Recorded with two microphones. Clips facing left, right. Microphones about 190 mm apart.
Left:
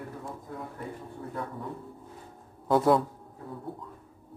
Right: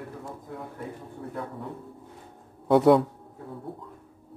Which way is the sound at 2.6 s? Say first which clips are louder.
Right 5 dB; 70° right (ahead or behind).